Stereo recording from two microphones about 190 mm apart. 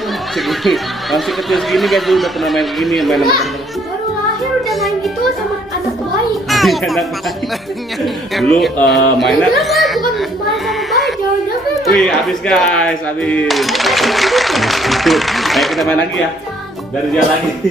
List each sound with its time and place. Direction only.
0.5 s speech: centre (ahead or behind)
6.5 s a child's voice: centre (ahead or behind)
11.8 s speech: centre (ahead or behind)